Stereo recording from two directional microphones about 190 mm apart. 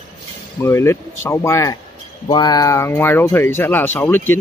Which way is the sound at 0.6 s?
15° left (ahead or behind).